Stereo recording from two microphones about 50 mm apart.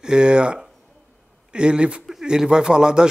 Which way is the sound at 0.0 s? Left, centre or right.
Centre.